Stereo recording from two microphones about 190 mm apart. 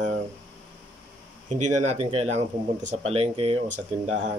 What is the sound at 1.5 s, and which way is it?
Speech, 35° right (ahead or behind).